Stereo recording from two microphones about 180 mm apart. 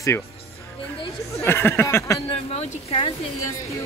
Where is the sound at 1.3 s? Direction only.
15° left (ahead or behind).